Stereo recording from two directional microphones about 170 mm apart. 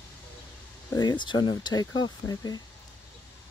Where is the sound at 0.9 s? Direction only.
25° left (ahead or behind).